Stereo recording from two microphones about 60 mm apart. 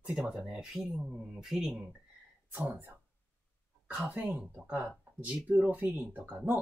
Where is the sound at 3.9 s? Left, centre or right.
Right.